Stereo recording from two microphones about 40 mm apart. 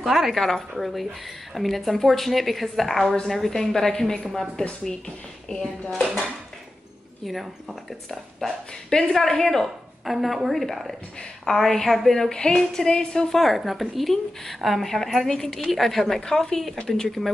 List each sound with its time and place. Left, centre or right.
0.0 s a woman's voice: centre
5.6 s a woman's voice: centre
7.2 s a woman's voice: centre
8.4 s a woman's voice: centre
10.0 s a woman's voice: centre
12.4 s a woman's voice: centre
13.4 s a woman's voice: centre